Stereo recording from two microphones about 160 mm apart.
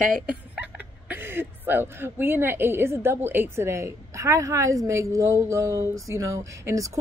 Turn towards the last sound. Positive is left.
turn(degrees=-20)  # may be behind; listen again after turning